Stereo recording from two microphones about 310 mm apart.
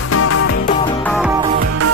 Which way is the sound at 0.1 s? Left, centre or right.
Left.